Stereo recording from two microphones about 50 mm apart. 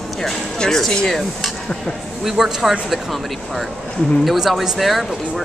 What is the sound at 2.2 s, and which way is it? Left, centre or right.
Speech, centre.